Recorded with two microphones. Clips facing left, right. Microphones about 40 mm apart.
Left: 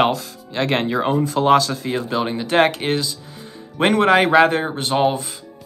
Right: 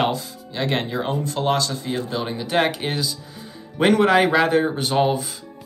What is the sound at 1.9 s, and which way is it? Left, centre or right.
Speech, left.